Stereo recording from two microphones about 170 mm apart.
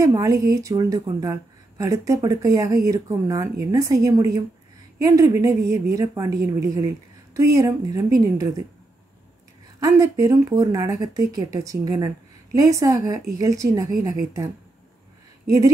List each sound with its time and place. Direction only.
0.0 s a woman's voice: 20° right (ahead or behind)
9.8 s a woman's voice: 20° right (ahead or behind)